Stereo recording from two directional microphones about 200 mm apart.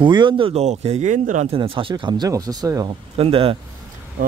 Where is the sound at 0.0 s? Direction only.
25° right (ahead or behind).